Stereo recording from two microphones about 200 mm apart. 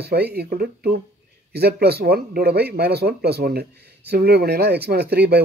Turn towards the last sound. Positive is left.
turn(degrees=-55)  # may be behind; listen again after turning